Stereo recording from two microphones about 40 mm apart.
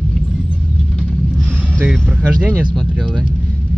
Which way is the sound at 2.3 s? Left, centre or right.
Right.